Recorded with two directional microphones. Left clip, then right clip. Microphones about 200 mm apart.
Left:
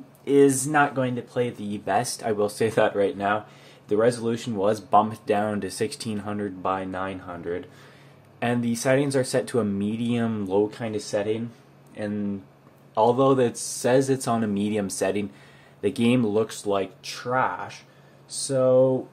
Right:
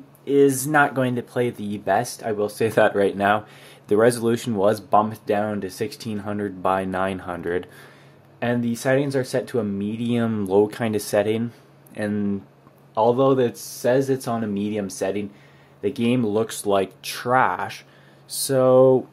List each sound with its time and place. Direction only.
0.2 s speech: centre (ahead or behind)
0.6 s speech: 25° right (ahead or behind)
2.0 s speech: 10° right (ahead or behind)
2.7 s speech: 30° right (ahead or behind)
6.7 s speech: 30° right (ahead or behind)
8.4 s speech: 15° right (ahead or behind)
10.7 s speech: 40° right (ahead or behind)
12.9 s speech: 15° right (ahead or behind)
16.3 s speech: 30° right (ahead or behind); by 18.9 s 45° right (ahead or behind)